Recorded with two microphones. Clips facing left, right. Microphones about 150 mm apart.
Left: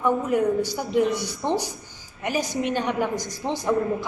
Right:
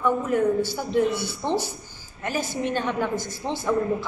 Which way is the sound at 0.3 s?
15° left (ahead or behind).